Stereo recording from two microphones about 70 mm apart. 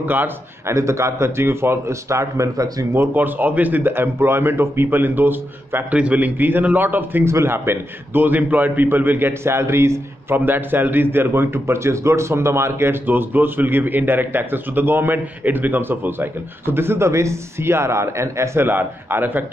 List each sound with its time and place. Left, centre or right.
0.0 s a man's voice: right
0.7 s a man's voice: right
3.2 s a man's voice: right
5.9 s a man's voice: centre; by 18.7 s right
18.7 s a man's voice: right